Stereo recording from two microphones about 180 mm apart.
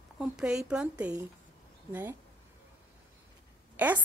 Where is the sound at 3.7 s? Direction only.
10° right (ahead or behind).